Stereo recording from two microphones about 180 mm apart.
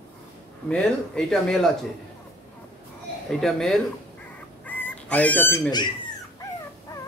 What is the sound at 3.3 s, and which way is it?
Speech, centre (ahead or behind).